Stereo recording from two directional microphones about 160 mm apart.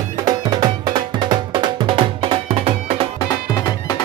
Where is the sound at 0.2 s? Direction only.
25° right (ahead or behind).